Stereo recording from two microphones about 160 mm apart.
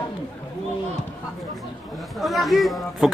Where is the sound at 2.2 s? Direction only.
Centre (ahead or behind).